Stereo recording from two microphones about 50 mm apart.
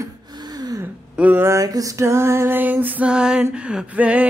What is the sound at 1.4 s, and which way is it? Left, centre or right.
Music, right.